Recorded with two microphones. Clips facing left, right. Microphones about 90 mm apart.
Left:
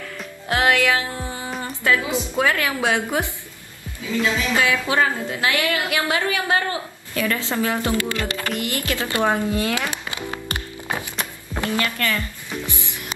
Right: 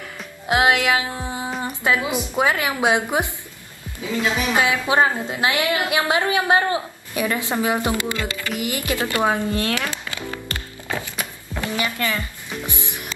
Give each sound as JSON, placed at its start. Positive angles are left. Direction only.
{"t": 0.5, "sound": "music", "side_deg": -20}
{"t": 1.6, "sound": "a woman's voice", "side_deg": -20}
{"t": 9.3, "sound": "speech", "side_deg": 5}
{"t": 9.8, "sound": "speech", "side_deg": 20}
{"t": 10.5, "sound": "music", "side_deg": 20}
{"t": 11.6, "sound": "speech", "side_deg": -20}